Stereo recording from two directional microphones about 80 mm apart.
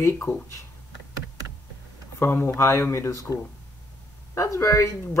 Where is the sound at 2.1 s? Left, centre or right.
Left.